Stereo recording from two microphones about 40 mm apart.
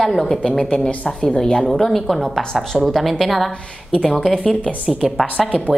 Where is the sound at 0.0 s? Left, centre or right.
Centre.